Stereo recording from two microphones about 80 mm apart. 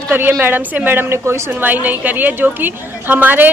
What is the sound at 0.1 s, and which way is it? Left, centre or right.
A woman's voice, right.